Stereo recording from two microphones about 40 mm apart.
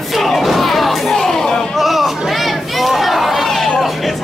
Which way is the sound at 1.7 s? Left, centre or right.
Centre.